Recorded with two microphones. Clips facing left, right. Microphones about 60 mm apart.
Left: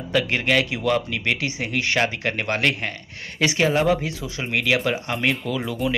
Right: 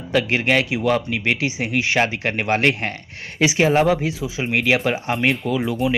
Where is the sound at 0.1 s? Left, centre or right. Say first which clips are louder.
Right 2 dB; centre.